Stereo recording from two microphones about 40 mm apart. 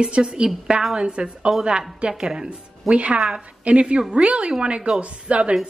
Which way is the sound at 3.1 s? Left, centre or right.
Centre.